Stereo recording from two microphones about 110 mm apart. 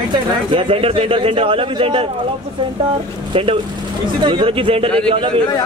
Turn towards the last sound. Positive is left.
turn(degrees=-50)  # may be behind; listen again after turning